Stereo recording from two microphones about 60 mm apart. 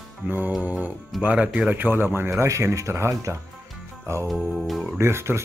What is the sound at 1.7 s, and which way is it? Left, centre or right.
Speech, right.